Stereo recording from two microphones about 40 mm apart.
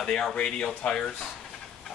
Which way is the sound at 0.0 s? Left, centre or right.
Left.